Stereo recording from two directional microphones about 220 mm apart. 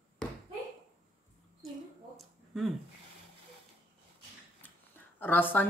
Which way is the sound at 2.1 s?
Centre (ahead or behind).